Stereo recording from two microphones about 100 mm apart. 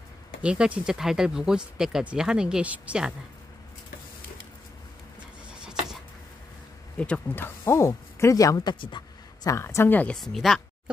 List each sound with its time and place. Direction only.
0.4 s speech: 10° right (ahead or behind)
5.5 s a sound: 5° right (ahead or behind)
7.0 s speech: 15° left (ahead or behind); by 8.7 s 35° left (ahead or behind)
8.7 s a woman's voice: 60° left (ahead or behind)
9.4 s speech: 30° left (ahead or behind)
10.1 s speech: centre (ahead or behind)